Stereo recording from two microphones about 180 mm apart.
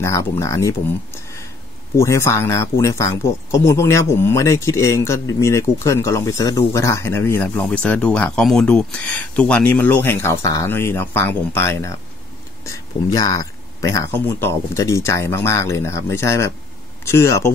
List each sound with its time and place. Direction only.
0.0 s speech: 15° left (ahead or behind)
2.0 s speech: 15° left (ahead or behind)